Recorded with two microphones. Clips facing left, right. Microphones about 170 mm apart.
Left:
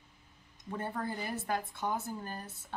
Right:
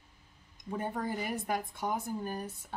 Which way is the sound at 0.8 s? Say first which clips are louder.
Right 2 dB; 15° right (ahead or behind).